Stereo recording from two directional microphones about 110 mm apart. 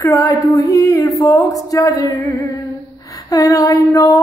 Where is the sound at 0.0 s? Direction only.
30° left (ahead or behind).